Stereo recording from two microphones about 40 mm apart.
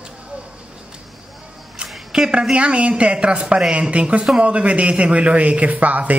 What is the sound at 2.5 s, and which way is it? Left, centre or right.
A man's voice, right.